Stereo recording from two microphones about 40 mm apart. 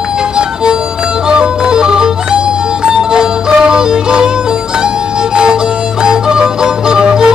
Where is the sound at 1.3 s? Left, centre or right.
Centre.